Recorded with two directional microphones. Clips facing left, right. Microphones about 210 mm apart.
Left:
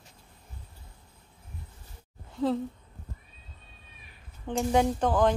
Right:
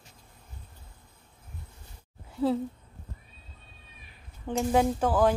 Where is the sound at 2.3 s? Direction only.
10° right (ahead or behind).